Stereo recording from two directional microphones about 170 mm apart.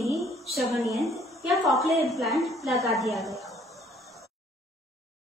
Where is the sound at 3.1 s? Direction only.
Centre (ahead or behind).